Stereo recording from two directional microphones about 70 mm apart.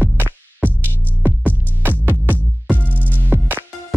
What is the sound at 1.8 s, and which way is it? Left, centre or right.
Music, right.